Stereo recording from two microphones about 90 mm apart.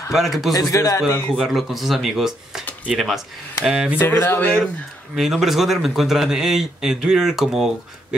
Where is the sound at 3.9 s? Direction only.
25° left (ahead or behind).